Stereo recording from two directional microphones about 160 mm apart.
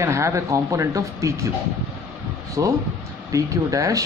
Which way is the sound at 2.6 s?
20° right (ahead or behind).